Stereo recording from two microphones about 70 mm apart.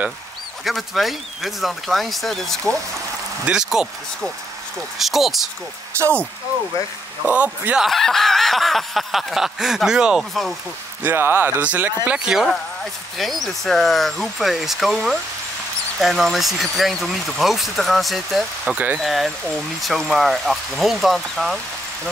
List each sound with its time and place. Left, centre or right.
0.7 s speech: centre
3.4 s speech: centre
4.9 s speech: centre
7.2 s speech: right
7.9 s speech: centre
11.0 s speech: right
13.2 s speech: centre
18.7 s speech: centre
19.0 s speech: centre